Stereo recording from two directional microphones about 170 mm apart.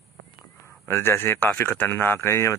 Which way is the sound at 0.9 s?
15° left (ahead or behind).